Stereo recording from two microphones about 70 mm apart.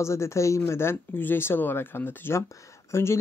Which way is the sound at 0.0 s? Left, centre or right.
Left.